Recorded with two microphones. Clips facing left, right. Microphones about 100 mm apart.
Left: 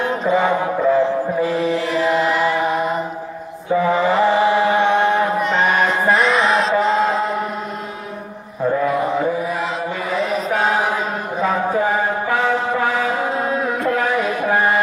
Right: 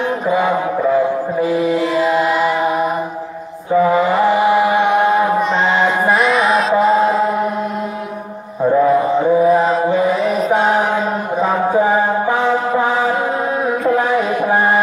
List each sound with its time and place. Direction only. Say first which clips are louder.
0.3 s music: right 1 dB; 15° right (ahead or behind)
3.8 s mantra: right 2 dB; 15° right (ahead or behind)
5.8 s music: right 2 dB; 10° right (ahead or behind)
6.7 s chant: right 4 dB; 10° right (ahead or behind)
9.5 s chant: right 10 dB; 35° right (ahead or behind)
11.7 s music: right 4 dB; 20° right (ahead or behind)